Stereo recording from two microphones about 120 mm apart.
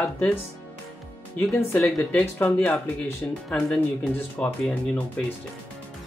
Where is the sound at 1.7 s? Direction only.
10° left (ahead or behind).